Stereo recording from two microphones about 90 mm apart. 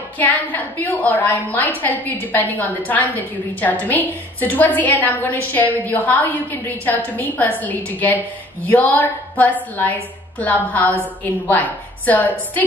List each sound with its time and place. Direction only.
0.2 s a woman's voice: 20° left (ahead or behind)